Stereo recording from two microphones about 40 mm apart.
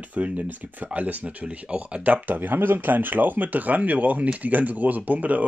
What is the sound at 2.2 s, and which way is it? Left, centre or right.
Speech, right.